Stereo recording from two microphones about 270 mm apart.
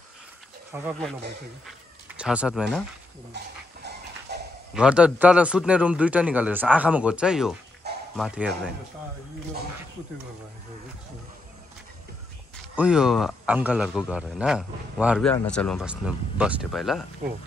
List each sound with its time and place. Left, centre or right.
0.7 s speech: centre
1.7 s a sound: centre
3.3 s dog: right
4.7 s speech: centre
7.8 s bow-wow: right
8.2 s speech: centre
12.7 s speech: centre